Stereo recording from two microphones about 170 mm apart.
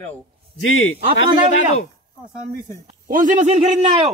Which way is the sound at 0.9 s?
35° right (ahead or behind).